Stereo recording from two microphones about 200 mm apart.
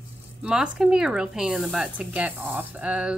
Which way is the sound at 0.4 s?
5° right (ahead or behind).